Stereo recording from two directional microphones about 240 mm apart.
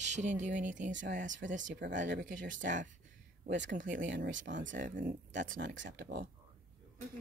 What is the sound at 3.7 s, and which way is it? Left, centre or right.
A woman's voice, right.